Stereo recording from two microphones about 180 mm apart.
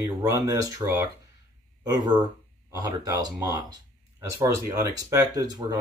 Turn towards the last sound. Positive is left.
turn(degrees=-20)  # may be behind; listen again after turning